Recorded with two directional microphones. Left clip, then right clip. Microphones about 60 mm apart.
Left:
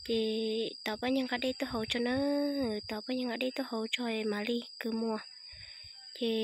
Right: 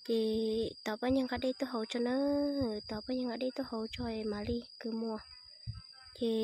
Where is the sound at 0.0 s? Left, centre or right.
Right; by 4.8 s centre.